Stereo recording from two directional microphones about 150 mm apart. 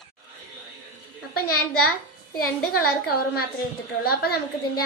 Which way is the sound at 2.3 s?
90° left.